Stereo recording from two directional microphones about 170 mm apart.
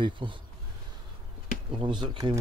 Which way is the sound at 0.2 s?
30° right (ahead or behind).